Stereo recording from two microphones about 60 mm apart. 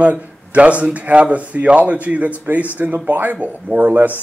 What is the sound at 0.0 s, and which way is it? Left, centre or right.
Speech, right.